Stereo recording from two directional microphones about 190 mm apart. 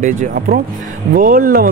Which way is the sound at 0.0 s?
45° right (ahead or behind).